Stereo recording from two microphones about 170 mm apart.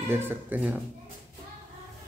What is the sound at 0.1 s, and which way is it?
Speech, 10° right (ahead or behind).